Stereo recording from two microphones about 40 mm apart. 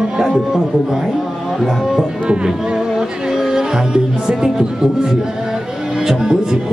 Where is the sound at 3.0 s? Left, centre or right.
Centre.